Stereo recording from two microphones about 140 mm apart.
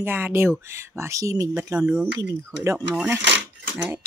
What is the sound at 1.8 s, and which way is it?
Speech, 10° right (ahead or behind).